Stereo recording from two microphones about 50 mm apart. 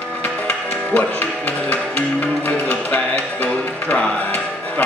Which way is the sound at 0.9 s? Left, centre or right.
Left.